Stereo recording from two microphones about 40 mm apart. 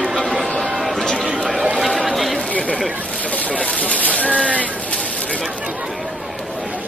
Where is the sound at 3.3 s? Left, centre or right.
Left.